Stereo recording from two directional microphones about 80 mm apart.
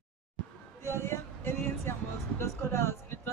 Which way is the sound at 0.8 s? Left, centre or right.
Left.